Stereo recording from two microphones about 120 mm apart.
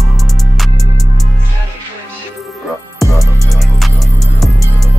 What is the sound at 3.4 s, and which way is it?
Music, centre (ahead or behind).